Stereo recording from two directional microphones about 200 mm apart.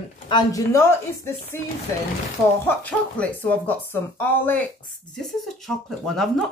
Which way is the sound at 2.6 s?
10° left (ahead or behind).